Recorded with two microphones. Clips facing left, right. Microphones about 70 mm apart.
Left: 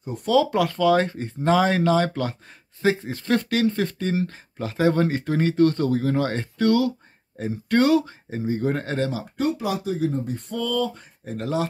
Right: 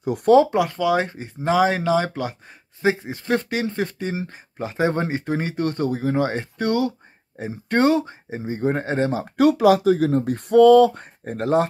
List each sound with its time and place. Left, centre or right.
0.0 s speech: right
0.5 s speech: centre
9.4 s speech: right